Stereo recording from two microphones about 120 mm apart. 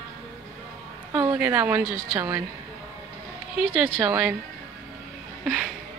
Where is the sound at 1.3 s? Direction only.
15° right (ahead or behind).